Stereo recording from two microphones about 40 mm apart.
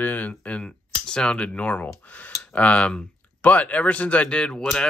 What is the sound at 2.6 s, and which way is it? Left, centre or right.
Speech, left.